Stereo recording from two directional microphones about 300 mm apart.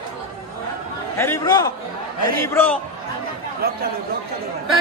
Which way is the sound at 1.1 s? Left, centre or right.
Centre.